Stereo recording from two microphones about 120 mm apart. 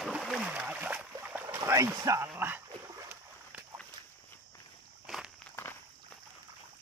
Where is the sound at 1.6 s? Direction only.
25° right (ahead or behind).